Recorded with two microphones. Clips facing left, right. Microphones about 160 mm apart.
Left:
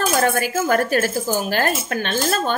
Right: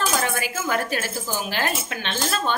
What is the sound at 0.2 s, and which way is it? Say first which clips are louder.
Speech: left 7 dB; 45° left (ahead or behind).